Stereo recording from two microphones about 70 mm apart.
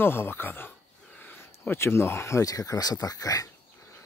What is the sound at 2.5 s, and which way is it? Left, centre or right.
Speech, left.